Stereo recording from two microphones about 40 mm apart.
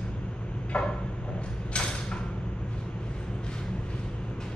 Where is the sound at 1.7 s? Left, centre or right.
Left.